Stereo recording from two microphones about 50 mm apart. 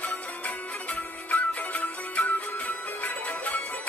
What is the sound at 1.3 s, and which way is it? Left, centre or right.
Music, left.